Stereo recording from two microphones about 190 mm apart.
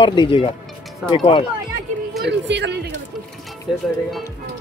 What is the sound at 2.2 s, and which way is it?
Speech, 65° right (ahead or behind).